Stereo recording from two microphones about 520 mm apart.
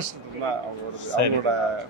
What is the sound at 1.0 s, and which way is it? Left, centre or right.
Speech, left.